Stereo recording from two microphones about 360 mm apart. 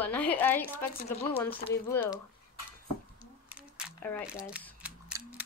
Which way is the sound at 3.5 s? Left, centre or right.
Centre.